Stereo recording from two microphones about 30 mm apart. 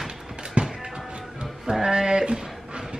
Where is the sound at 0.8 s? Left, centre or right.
Right.